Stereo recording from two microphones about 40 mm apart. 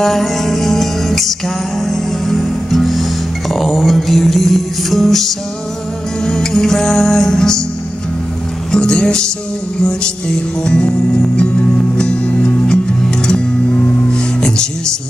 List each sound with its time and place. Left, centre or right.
0.0 s music: centre
6.2 s music: centre
8.7 s music: centre
14.1 s music: centre